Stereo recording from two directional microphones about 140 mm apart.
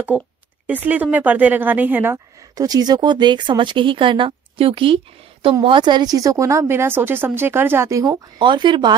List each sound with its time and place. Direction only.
0.1 s speech: 50° right (ahead or behind)
0.7 s speech: 10° right (ahead or behind)
2.5 s speech: 25° right (ahead or behind)
8.4 s speech: 35° right (ahead or behind)